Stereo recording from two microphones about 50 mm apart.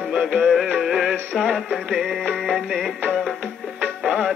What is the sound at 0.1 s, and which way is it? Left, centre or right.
Music, centre.